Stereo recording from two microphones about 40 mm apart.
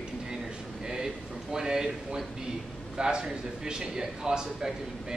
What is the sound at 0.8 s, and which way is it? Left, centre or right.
A man's voice, centre.